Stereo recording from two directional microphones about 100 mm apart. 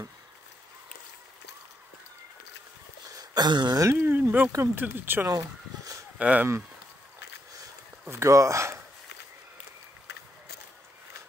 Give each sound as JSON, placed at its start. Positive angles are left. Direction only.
{"t": 3.2, "sound": "speech", "side_deg": -45}
{"t": 3.8, "sound": "speech", "side_deg": -25}
{"t": 5.3, "sound": "a sound", "side_deg": -35}
{"t": 6.1, "sound": "speech", "side_deg": -10}
{"t": 8.1, "sound": "speech", "side_deg": -30}